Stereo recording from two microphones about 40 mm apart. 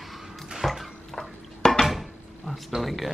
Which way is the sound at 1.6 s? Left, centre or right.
Centre.